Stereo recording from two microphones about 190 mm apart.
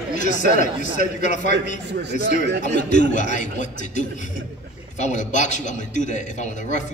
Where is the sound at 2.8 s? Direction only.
40° left (ahead or behind).